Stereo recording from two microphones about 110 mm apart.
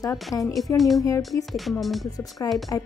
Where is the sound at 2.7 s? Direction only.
30° left (ahead or behind).